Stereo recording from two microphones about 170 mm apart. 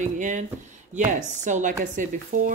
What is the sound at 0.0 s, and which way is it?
Speech, 45° right (ahead or behind).